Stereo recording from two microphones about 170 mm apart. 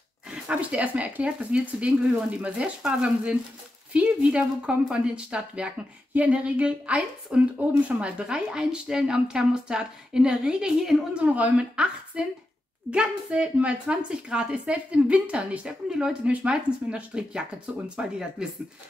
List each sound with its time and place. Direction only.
0.3 s a woman's voice: 5° right (ahead or behind)